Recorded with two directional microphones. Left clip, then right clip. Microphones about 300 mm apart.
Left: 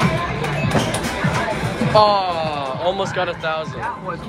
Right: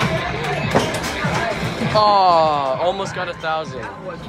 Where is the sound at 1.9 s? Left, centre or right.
Centre.